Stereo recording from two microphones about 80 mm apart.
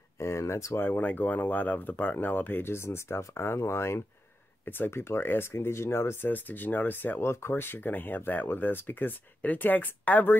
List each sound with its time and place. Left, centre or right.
0.2 s speech: left
0.7 s speech: left